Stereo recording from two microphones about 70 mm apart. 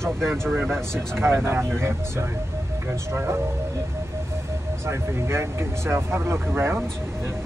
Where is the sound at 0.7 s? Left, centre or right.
Right.